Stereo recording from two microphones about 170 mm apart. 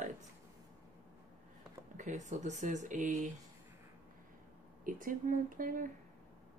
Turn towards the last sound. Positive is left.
turn(degrees=-50)  # may be behind; listen again after turning